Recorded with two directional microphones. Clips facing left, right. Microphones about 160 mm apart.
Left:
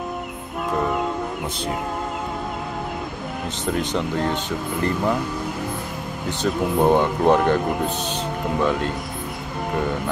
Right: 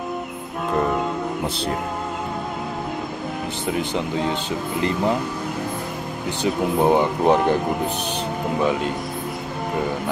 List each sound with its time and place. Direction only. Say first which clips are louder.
3.6 s speech: left 1 dB; 15° right (ahead or behind)
6.4 s speech: even; 10° right (ahead or behind)